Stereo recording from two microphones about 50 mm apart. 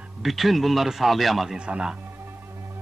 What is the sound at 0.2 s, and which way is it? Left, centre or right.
A man's voice, centre.